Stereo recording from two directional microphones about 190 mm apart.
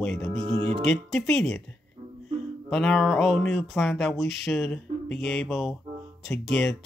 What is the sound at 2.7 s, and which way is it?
Speech, 5° left (ahead or behind).